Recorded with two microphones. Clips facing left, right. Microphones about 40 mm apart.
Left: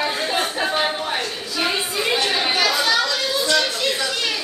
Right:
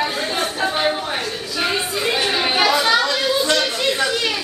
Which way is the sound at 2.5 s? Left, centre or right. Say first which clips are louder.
Right 5 dB; right.